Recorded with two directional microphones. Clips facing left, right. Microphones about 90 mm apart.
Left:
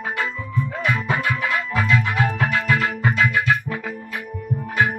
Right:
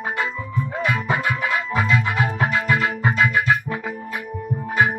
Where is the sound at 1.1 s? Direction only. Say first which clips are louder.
Even; 35° right (ahead or behind).